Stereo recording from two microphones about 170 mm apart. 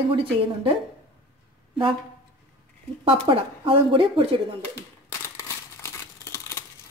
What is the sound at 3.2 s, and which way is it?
Speech, 30° right (ahead or behind).